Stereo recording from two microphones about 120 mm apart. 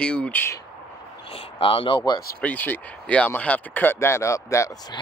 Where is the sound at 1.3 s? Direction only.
50° left (ahead or behind).